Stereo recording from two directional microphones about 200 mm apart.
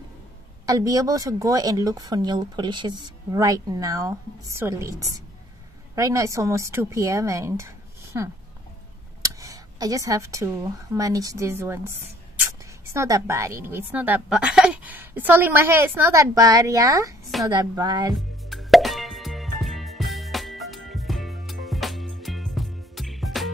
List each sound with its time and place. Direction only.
0.7 s speech: 20° right (ahead or behind)
12.9 s speech: 15° right (ahead or behind)
18.5 s music: centre (ahead or behind)